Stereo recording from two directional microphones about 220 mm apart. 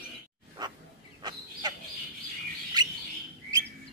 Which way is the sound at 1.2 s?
20° right (ahead or behind).